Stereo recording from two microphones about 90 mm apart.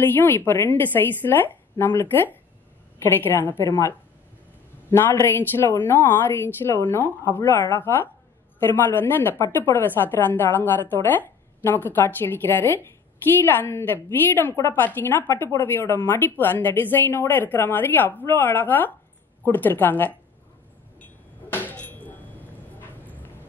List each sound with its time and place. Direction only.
0.0 s a woman's voice: 20° left (ahead or behind)
4.9 s a woman's voice: 30° left (ahead or behind)
21.0 s a sound: 20° left (ahead or behind)